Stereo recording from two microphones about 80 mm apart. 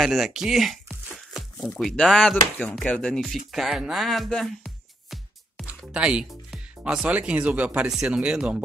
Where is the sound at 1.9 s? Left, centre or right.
Centre.